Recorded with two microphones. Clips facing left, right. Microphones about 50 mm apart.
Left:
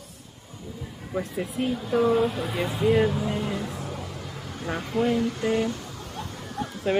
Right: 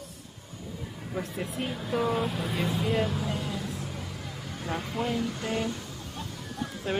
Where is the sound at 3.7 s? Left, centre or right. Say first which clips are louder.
Left 3 dB; centre.